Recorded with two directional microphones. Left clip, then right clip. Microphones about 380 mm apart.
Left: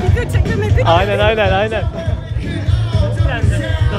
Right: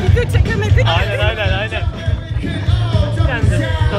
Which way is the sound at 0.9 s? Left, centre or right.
Left.